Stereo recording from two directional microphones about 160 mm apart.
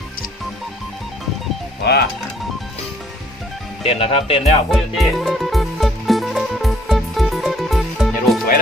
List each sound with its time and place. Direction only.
3.8 s speech: 35° left (ahead or behind)
4.6 s music: centre (ahead or behind)